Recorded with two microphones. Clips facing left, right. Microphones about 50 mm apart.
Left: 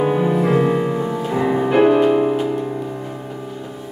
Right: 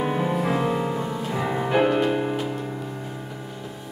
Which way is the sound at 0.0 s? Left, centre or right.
Centre.